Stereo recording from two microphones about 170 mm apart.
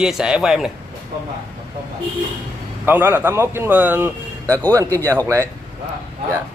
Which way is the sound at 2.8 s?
10° right (ahead or behind).